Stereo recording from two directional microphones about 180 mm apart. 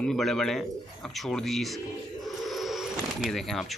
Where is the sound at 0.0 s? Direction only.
Centre (ahead or behind).